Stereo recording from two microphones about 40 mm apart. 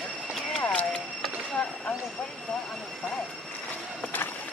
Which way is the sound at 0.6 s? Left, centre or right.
Left.